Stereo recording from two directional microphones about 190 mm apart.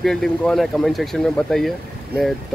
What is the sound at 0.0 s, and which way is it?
Speech, centre (ahead or behind).